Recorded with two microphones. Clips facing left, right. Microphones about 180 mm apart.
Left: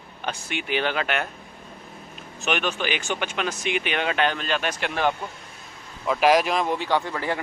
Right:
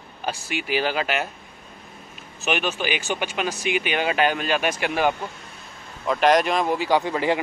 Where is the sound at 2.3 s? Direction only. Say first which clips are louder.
Right 1 dB; 5° right (ahead or behind).